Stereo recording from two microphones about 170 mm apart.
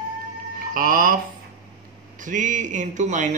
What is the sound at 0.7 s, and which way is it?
Speech, 55° right (ahead or behind).